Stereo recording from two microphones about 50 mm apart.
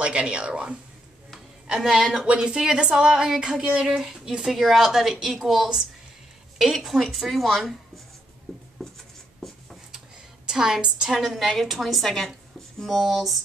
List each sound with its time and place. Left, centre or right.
0.0 s speech: right
1.8 s a woman's voice: centre
8.7 s writing: centre
9.9 s a sound: centre
11.1 s a woman's voice: centre